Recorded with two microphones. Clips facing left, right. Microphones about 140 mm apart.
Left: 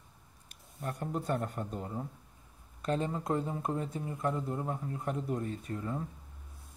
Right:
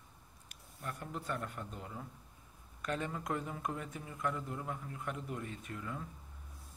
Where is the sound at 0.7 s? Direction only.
30° left (ahead or behind).